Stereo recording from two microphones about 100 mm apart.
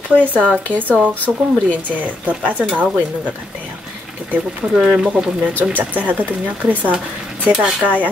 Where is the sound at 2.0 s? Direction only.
15° right (ahead or behind).